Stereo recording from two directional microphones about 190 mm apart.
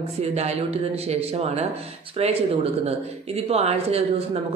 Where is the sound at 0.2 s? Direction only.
35° right (ahead or behind).